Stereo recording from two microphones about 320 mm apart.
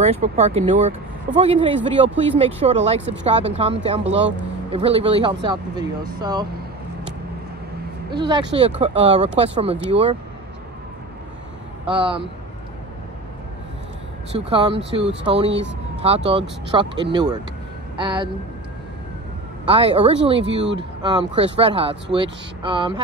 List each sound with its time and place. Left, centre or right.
0.0 s speech: right
8.1 s speech: centre
11.8 s speech: centre
14.3 s speech: centre
19.7 s speech: centre